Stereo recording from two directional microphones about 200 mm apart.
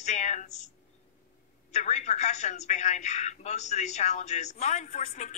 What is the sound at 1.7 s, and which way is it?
A woman's voice, 35° left (ahead or behind).